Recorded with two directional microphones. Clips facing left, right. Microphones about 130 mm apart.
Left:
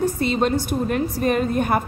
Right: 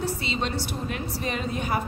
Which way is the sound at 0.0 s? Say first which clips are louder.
Left 8 dB; 50° left (ahead or behind).